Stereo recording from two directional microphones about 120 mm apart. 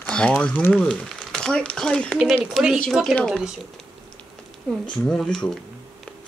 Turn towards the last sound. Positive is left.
turn(degrees=5)  # may be behind; listen again after turning